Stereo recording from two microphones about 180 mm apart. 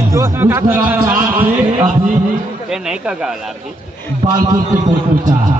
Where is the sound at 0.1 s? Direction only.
15° right (ahead or behind).